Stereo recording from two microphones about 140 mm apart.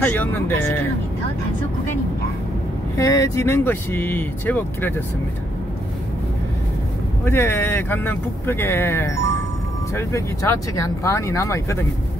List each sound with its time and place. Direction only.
0.0 s speech: 10° left (ahead or behind)
3.0 s speech: 20° left (ahead or behind)
7.2 s speech: 20° left (ahead or behind)